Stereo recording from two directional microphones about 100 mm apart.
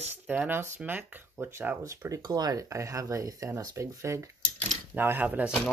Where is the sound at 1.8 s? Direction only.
35° right (ahead or behind); by 5.5 s 15° right (ahead or behind).